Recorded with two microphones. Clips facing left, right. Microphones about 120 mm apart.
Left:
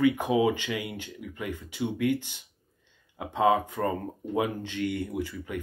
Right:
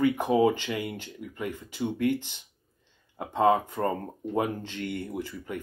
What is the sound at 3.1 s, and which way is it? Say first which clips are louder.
Speech: right 1 dB; centre (ahead or behind).